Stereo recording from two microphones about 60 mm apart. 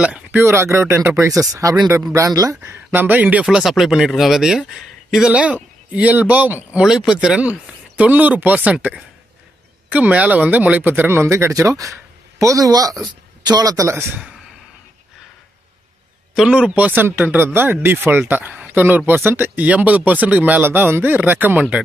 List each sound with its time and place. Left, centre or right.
0.4 s speech: right
1.2 s speech: right
2.6 s speech: right
3.4 s speech: centre
5.3 s speech: right
6.8 s speech: centre; by 11.5 s right
11.5 s a man's voice: right
13.8 s speech: right
16.4 s speech: centre